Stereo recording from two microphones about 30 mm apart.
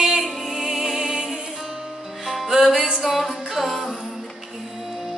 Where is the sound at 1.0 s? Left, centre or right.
Right.